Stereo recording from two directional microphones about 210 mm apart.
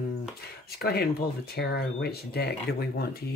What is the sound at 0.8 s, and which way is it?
Speech, 50° left (ahead or behind).